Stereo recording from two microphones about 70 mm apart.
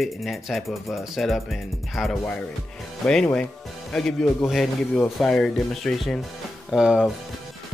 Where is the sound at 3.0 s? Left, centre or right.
Centre.